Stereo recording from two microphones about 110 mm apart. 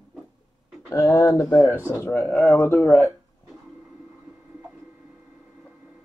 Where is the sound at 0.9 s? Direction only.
30° left (ahead or behind).